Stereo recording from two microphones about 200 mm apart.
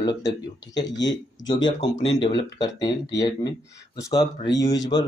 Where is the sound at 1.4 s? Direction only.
20° left (ahead or behind).